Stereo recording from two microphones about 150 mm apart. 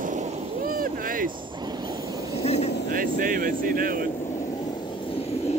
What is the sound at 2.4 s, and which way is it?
Vehicle, 45° left (ahead or behind).